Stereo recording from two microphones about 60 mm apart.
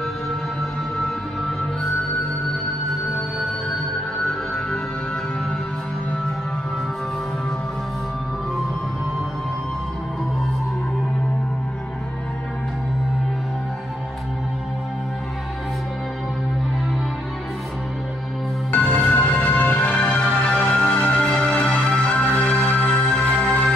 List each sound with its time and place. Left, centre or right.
18.7 s music: left